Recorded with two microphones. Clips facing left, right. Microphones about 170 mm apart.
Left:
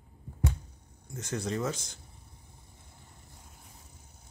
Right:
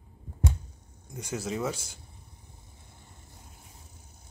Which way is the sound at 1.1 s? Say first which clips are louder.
Even; 10° right (ahead or behind).